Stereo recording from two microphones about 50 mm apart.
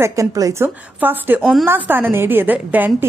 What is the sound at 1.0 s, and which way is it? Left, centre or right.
Speech, right.